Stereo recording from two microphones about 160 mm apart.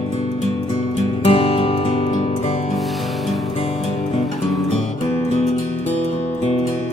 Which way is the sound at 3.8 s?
45° left (ahead or behind).